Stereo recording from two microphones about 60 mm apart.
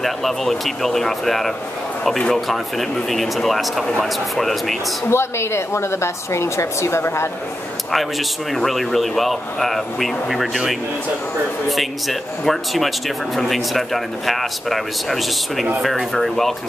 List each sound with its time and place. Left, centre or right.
0.0 s speech: centre
5.1 s a woman's voice: left
8.5 s speech: centre